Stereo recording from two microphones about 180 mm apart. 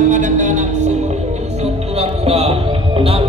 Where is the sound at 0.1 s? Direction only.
45° right (ahead or behind).